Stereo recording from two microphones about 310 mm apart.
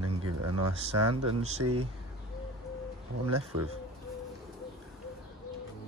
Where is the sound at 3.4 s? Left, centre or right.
Right.